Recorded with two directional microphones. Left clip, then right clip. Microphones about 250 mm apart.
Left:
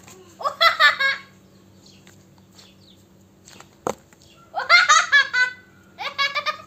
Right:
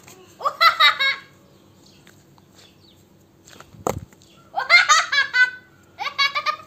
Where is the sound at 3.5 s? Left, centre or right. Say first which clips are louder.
Right 2 dB; centre.